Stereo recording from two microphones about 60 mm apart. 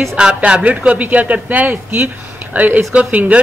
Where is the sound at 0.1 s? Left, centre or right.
Centre.